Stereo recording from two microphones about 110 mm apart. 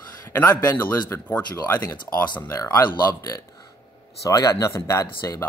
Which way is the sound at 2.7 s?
35° left (ahead or behind).